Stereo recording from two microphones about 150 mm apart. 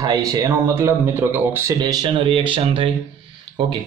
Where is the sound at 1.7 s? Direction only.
30° right (ahead or behind).